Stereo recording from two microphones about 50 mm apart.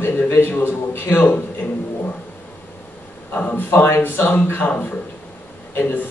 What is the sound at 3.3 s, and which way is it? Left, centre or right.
A man's voice, left.